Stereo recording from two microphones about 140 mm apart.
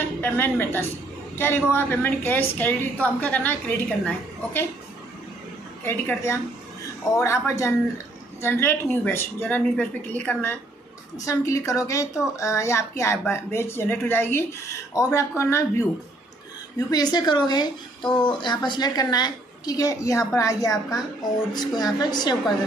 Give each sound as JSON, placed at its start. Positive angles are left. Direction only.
{"t": 0.2, "sound": "speech", "side_deg": 15}
{"t": 5.9, "sound": "a woman's voice", "side_deg": 15}